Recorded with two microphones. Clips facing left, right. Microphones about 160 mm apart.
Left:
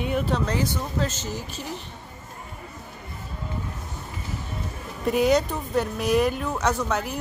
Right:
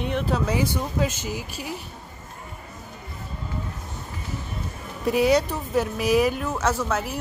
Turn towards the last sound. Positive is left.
turn(degrees=0)  # may be behind; listen again after turning